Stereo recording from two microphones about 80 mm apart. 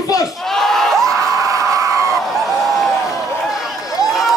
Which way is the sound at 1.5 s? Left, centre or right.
Right.